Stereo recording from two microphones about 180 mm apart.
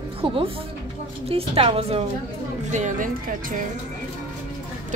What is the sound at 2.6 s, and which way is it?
Speech, 40° right (ahead or behind).